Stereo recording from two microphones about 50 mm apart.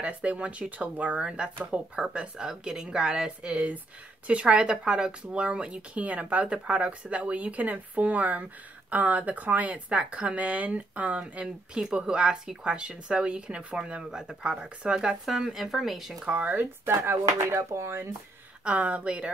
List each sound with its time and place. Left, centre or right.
0.0 s speech: right; by 16.3 s centre
16.3 s speech: right
16.8 s speech: right
18.6 s speech: right